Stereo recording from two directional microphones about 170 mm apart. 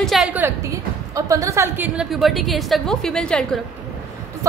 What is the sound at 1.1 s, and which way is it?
A woman's voice, 20° right (ahead or behind).